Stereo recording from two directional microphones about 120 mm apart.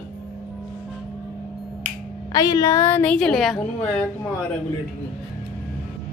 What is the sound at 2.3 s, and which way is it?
A woman's voice, 30° left (ahead or behind).